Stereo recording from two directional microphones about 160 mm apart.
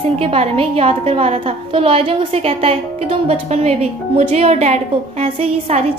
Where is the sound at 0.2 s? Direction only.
35° right (ahead or behind).